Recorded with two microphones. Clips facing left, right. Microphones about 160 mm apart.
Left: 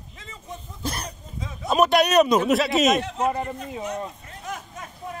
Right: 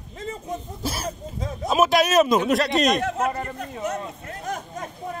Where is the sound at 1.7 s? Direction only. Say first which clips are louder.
Even; centre (ahead or behind).